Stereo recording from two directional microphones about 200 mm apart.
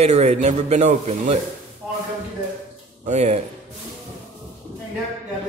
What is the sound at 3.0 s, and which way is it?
Speech, 35° right (ahead or behind).